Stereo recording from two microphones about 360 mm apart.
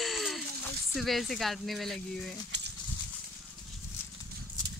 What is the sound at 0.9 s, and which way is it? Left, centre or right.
Speech, centre.